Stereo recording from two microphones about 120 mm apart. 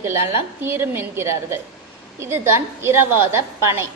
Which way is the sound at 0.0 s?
20° right (ahead or behind).